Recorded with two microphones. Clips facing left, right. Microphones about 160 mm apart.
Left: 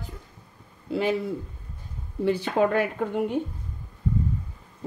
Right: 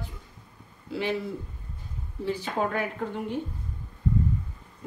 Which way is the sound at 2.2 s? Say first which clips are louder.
Left 6 dB; 70° left (ahead or behind).